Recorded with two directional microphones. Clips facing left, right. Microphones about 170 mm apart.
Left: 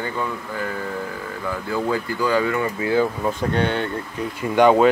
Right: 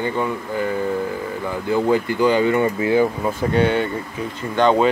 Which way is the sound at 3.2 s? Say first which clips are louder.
Right 3 dB; 10° right (ahead or behind).